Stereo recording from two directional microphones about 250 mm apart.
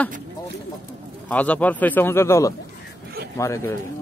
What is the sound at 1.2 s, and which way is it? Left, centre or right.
Speech, centre.